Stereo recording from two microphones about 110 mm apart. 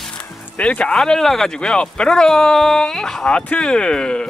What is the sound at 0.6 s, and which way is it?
Speech, 10° left (ahead or behind).